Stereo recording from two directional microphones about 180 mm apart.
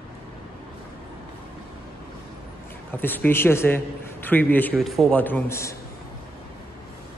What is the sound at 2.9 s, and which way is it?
A man's voice, 10° left (ahead or behind).